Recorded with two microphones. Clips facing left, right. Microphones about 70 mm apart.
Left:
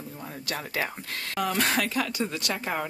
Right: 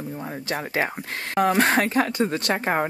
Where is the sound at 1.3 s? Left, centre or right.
Right.